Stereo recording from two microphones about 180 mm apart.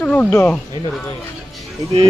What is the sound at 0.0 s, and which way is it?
Speech, 5° left (ahead or behind).